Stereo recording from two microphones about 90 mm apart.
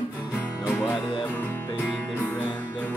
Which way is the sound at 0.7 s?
25° left (ahead or behind).